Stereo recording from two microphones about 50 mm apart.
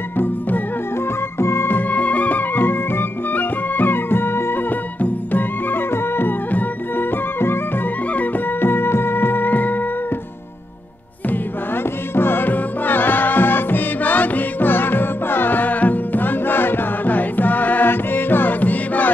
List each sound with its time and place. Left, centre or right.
1.4 s music: left
5.0 s music: left
11.2 s music: left